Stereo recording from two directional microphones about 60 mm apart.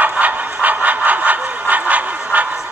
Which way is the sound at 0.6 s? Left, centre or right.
Right.